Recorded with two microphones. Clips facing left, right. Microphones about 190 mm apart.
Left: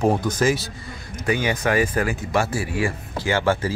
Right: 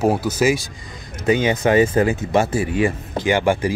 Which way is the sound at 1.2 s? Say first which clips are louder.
Right 5 dB; 20° right (ahead or behind).